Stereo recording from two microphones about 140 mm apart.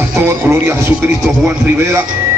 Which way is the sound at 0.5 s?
20° right (ahead or behind).